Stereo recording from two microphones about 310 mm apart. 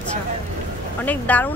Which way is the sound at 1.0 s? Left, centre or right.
Centre.